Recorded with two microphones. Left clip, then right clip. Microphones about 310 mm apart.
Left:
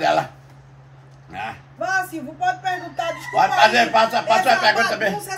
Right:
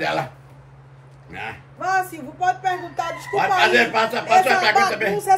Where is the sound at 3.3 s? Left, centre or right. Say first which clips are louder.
Left 2 dB; centre.